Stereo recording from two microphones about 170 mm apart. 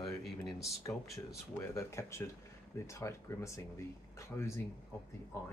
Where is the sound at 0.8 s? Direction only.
15° left (ahead or behind).